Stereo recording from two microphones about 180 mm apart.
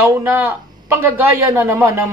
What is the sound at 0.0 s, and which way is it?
Speech, 10° right (ahead or behind).